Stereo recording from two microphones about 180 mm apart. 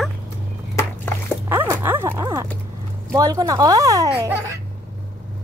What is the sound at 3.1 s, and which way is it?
A woman's voice, 20° right (ahead or behind).